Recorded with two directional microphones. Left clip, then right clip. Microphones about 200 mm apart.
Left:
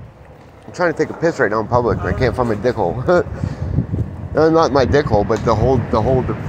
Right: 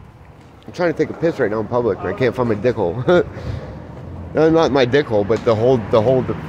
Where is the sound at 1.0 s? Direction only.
30° right (ahead or behind).